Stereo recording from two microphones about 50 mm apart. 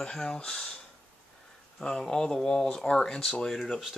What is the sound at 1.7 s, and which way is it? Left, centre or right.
Speech, centre.